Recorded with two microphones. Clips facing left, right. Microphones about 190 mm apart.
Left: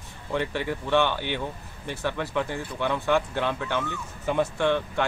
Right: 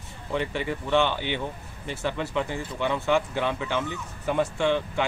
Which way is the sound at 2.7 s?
15° right (ahead or behind).